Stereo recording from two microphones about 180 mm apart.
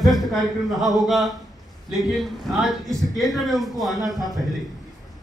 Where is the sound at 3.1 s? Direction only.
Centre (ahead or behind).